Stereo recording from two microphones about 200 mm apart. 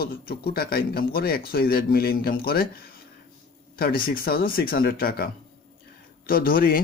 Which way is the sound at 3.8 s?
45° left (ahead or behind).